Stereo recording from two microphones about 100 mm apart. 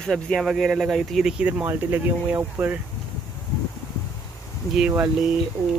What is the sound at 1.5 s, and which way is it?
Speech, 20° right (ahead or behind).